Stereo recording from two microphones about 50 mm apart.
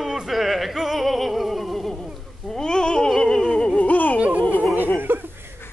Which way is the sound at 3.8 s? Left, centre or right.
Left.